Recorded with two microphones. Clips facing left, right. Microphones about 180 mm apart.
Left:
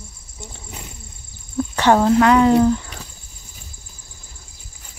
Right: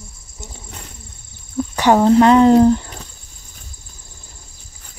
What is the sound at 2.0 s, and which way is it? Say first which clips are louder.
Speech: right 5 dB; 30° right (ahead or behind).